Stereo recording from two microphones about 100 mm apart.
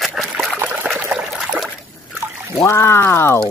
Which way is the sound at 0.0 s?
5° right (ahead or behind).